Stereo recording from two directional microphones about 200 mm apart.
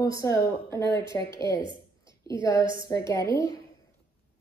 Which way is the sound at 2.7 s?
15° left (ahead or behind).